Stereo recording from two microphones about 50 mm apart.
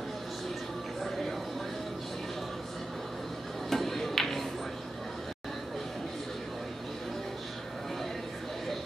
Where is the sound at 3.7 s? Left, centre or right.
Centre.